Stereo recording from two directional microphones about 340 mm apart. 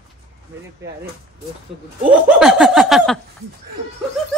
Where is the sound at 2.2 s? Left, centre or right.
Centre.